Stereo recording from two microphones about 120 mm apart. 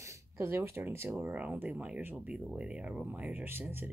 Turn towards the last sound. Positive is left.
turn(degrees=-20)  # may be behind; listen again after turning